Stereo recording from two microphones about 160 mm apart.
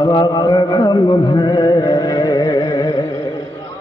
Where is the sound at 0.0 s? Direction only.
25° left (ahead or behind).